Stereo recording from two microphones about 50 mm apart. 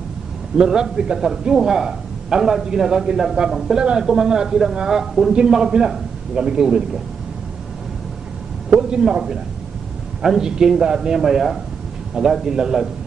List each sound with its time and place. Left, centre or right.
0.7 s a man's voice: centre
8.9 s a man's voice: centre